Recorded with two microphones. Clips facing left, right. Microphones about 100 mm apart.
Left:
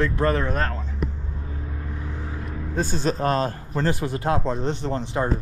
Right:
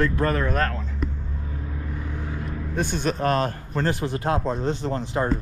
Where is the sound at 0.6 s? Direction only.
5° left (ahead or behind).